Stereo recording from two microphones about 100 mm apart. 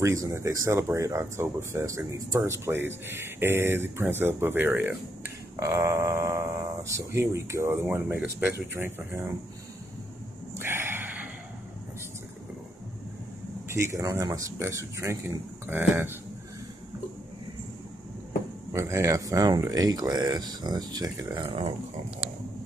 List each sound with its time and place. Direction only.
0.0 s speech: 30° right (ahead or behind)
5.6 s speech: 35° right (ahead or behind)
10.6 s a sound: 20° right (ahead or behind)
13.7 s speech: 30° right (ahead or behind)
18.7 s speech: 30° right (ahead or behind)